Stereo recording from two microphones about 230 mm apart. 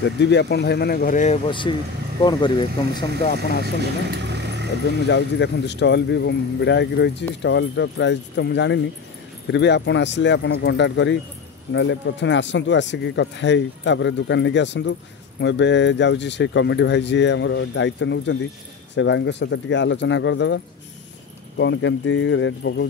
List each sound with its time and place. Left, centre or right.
0.0 s speech: left; by 3.1 s centre
3.6 s speech: right
4.8 s speech: left